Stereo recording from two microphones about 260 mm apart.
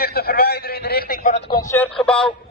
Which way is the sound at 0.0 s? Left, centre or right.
Left.